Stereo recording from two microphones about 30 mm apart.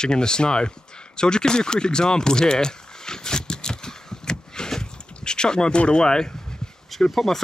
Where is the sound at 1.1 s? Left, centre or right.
Left.